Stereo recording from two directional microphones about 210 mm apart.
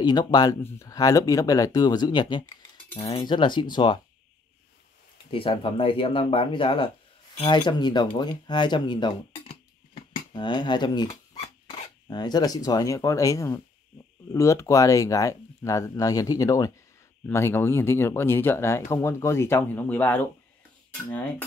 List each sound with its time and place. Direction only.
0.0 s speech: 20° left (ahead or behind)
5.3 s speech: 25° left (ahead or behind)
9.9 s dog: 25° left (ahead or behind)
12.1 s speech: 20° left (ahead or behind)